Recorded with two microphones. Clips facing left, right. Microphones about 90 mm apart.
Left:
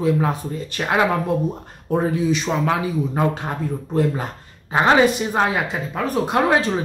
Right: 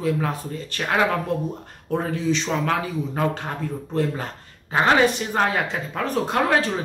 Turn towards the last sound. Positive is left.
turn(degrees=20)  # may be behind; listen again after turning